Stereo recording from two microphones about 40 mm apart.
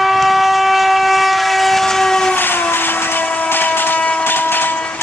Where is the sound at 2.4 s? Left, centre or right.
Left.